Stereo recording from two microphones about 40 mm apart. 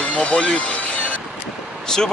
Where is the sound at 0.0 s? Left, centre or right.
Left.